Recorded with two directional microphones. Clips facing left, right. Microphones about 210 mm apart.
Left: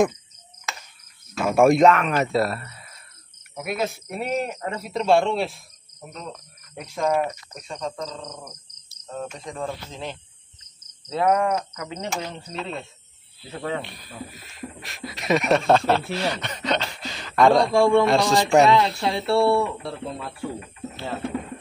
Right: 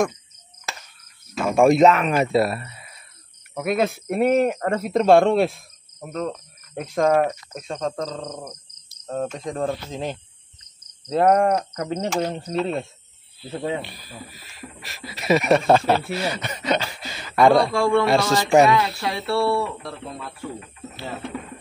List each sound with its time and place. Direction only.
1.3 s speech: 5° left (ahead or behind); by 2.9 s 15° right (ahead or behind)
3.5 s speech: 55° right (ahead or behind)
6.8 s speech: 50° right (ahead or behind)
11.1 s insect: 60° right (ahead or behind)
11.5 s speech: 40° right (ahead or behind)
11.9 s speech: 50° right (ahead or behind)
13.5 s speech: 20° right (ahead or behind)
13.7 s speech: centre (ahead or behind)
17.7 s speech: 20° left (ahead or behind)